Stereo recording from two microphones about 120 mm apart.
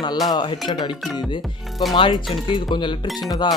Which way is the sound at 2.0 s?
40° left (ahead or behind).